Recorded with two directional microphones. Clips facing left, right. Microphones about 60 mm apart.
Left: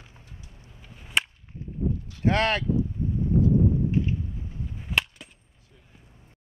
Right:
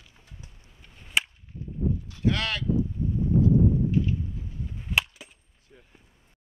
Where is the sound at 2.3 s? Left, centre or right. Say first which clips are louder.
Left 4 dB; left.